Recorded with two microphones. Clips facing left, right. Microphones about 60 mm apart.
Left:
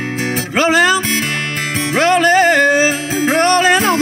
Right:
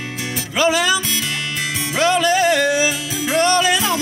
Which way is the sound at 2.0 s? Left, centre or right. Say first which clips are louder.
Left 5 dB; left.